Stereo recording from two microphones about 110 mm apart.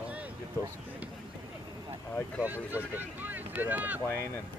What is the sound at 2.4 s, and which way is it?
Speech, 15° right (ahead or behind).